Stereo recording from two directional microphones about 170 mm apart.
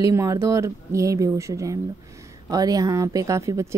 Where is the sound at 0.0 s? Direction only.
20° right (ahead or behind).